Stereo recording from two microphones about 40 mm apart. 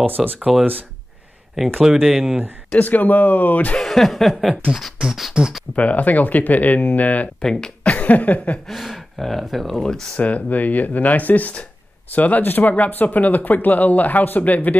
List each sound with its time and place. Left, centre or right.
0.0 s speech: right
1.8 s speech: centre
2.7 s speech: left
3.8 s chuckle: centre
5.0 s speech: centre
5.8 s speech: left
7.4 s speech: centre
7.8 s a sound: left
8.6 s speech: centre
9.8 s speech: centre
10.1 s speech: left